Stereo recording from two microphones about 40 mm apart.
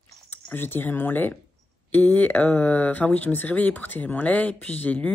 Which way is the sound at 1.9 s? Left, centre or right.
Left.